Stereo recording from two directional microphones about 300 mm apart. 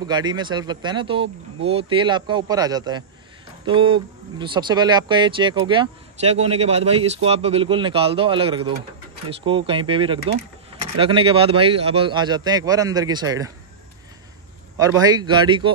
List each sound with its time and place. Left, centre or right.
0.0 s speech: centre
14.8 s speech: centre